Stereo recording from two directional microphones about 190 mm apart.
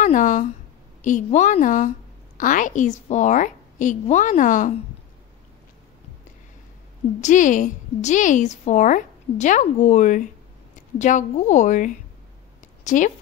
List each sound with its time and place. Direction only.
0.0 s a woman's voice: 40° left (ahead or behind)
7.2 s a woman's voice: 40° left (ahead or behind)